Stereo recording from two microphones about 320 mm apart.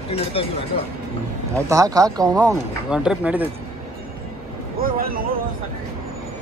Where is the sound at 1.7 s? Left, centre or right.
Centre.